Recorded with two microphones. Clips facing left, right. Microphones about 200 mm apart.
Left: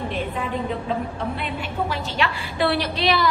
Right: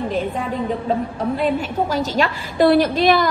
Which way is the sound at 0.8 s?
40° right (ahead or behind).